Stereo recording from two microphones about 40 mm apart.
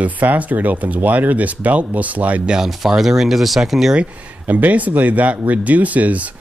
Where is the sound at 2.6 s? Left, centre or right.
Centre.